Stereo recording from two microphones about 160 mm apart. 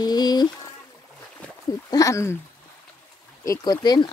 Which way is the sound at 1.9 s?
20° left (ahead or behind).